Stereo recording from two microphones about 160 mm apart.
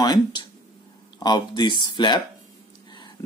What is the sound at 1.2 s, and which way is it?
Speech, 25° left (ahead or behind).